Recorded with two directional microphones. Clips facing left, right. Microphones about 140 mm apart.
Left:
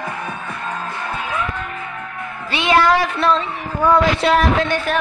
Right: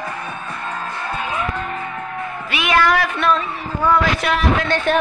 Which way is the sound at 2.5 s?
30° left (ahead or behind).